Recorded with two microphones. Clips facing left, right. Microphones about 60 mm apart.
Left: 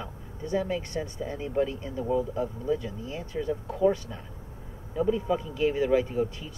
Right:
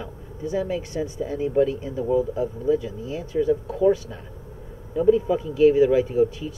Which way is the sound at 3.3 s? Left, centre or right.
Centre.